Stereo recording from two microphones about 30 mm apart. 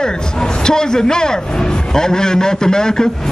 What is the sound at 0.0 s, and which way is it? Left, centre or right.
Speech, left.